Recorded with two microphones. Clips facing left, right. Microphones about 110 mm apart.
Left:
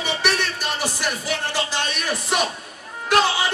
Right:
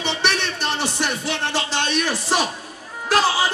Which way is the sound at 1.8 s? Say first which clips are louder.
Right 3 dB; 30° right (ahead or behind).